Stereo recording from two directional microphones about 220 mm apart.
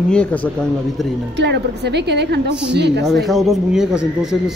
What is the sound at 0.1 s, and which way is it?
Speech, 5° left (ahead or behind).